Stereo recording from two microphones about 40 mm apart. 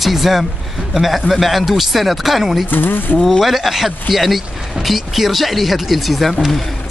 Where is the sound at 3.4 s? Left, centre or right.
Centre.